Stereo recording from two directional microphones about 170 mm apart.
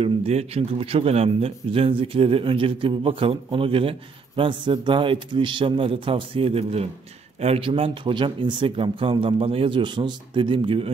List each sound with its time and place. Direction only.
0.0 s speech: 40° right (ahead or behind)